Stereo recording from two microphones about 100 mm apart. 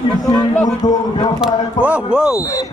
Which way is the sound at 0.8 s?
40° left (ahead or behind).